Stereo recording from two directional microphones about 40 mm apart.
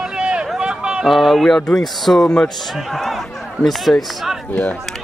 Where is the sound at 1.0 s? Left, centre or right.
Centre.